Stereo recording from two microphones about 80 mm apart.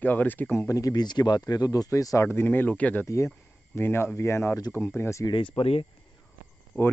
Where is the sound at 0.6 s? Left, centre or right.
Left.